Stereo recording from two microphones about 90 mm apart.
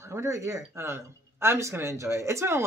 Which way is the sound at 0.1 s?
30° right (ahead or behind).